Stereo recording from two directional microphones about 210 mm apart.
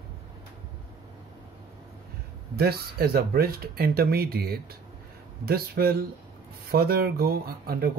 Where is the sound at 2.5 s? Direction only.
45° right (ahead or behind).